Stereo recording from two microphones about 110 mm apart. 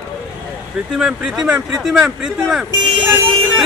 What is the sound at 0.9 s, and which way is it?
Speech, 5° right (ahead or behind).